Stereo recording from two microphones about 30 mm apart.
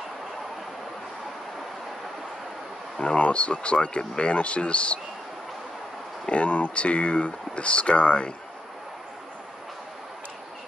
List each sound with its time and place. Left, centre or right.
3.0 s speech: left
6.3 s speech: left